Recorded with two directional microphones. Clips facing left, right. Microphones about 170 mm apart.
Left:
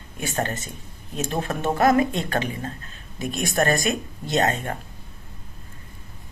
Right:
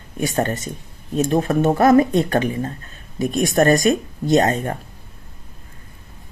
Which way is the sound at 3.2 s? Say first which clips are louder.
Right 6 dB; 40° right (ahead or behind).